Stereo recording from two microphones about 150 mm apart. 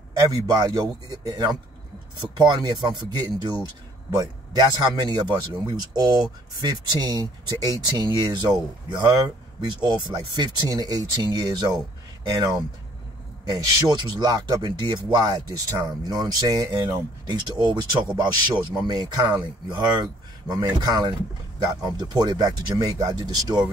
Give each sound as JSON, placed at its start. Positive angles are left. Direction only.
{"t": 0.3, "sound": "speech", "side_deg": -25}